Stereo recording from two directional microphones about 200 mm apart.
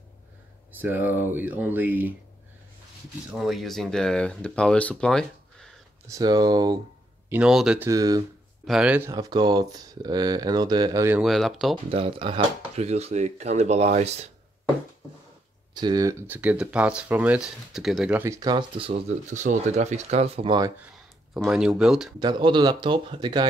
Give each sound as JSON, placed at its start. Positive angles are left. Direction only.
{"t": 0.7, "sound": "speech", "side_deg": -10}
{"t": 3.3, "sound": "speech", "side_deg": 0}
{"t": 6.0, "sound": "speech", "side_deg": -20}
{"t": 7.2, "sound": "speech", "side_deg": -5}
{"t": 7.9, "sound": "speech", "side_deg": -20}
{"t": 8.6, "sound": "speech", "side_deg": -5}
{"t": 9.1, "sound": "speech", "side_deg": -20}
{"t": 11.2, "sound": "speech", "side_deg": 0}
{"t": 11.9, "sound": "speech", "side_deg": -25}
{"t": 15.7, "sound": "speech", "side_deg": -20}
{"t": 21.3, "sound": "speech", "side_deg": -5}
{"t": 22.2, "sound": "speech", "side_deg": -20}